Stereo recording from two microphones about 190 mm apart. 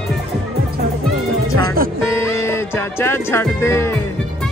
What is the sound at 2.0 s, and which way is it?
Music, 15° left (ahead or behind).